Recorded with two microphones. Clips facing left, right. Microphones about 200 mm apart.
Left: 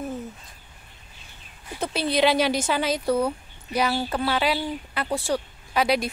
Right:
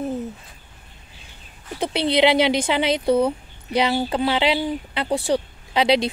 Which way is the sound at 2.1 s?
20° right (ahead or behind).